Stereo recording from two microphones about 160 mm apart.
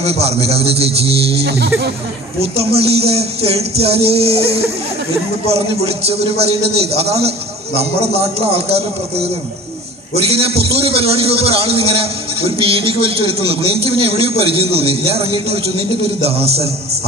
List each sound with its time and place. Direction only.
0.0 s a man's voice: 40° right (ahead or behind)
1.4 s speech: 90° right
2.6 s a man's voice: 40° right (ahead or behind)
6.3 s a man's voice: 40° right (ahead or behind)
10.3 s a man's voice: 40° right (ahead or behind)